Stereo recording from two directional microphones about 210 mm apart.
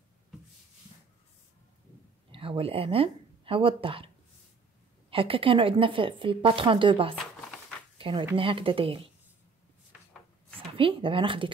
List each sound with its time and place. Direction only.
2.3 s speech: 25° right (ahead or behind)
5.1 s speech: 25° right (ahead or behind)
7.4 s a sound: 5° left (ahead or behind)
8.0 s speech: 25° right (ahead or behind)
10.7 s speech: 25° right (ahead or behind)